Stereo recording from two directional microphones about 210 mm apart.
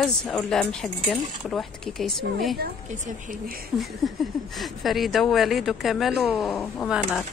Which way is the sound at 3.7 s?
Centre (ahead or behind).